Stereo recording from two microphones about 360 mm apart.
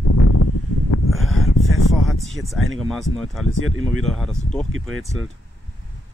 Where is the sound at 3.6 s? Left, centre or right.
Right.